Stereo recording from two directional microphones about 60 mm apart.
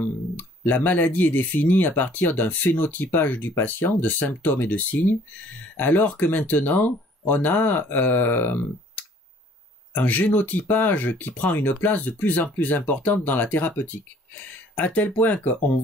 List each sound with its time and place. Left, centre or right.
0.0 s speech: left